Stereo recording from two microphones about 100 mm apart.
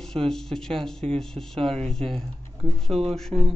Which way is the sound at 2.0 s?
90° right.